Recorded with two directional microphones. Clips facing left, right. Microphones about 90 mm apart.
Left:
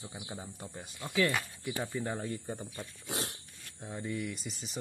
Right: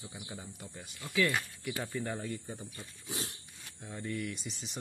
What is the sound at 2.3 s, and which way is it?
Speech, 40° left (ahead or behind).